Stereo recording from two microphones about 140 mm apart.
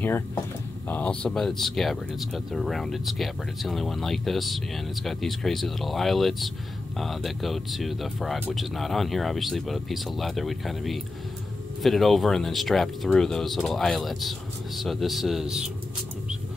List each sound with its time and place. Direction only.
0.8 s speech: 10° left (ahead or behind)